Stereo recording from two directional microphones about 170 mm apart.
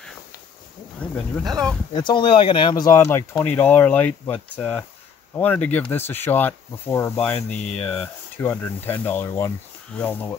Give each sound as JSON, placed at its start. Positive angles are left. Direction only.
{"t": 1.1, "sound": "speech", "side_deg": 0}
{"t": 1.9, "sound": "speech", "side_deg": 25}